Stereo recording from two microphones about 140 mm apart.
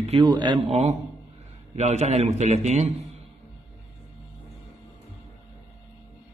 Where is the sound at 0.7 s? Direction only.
50° right (ahead or behind).